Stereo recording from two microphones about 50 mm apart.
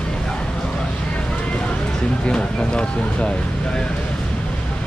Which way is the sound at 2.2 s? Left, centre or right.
Centre.